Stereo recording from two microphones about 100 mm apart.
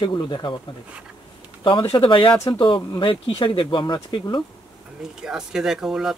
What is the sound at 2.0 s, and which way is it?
Speech, 55° left (ahead or behind).